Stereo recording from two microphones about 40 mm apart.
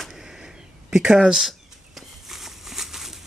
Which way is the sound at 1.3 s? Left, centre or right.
Centre.